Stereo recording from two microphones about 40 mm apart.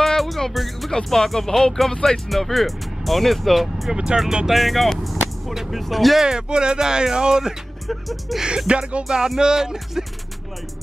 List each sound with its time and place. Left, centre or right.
0.0 s music: centre
0.9 s speech: centre
3.9 s speech: right
4.5 s speech: centre
6.2 s speech: centre
7.9 s speech: centre
8.4 s speech: centre
8.6 s speech: right
9.4 s speech: centre